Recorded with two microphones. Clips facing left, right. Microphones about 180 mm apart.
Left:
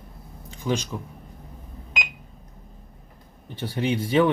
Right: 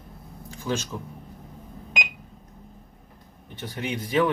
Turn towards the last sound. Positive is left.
turn(degrees=30)  # may be behind; listen again after turning